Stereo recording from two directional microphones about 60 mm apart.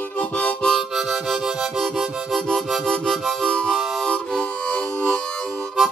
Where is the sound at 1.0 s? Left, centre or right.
Centre.